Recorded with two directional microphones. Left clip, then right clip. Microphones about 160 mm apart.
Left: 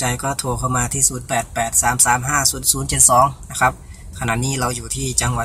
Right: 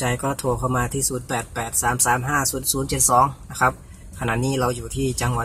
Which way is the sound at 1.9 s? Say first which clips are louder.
Left 1 dB; 20° right (ahead or behind).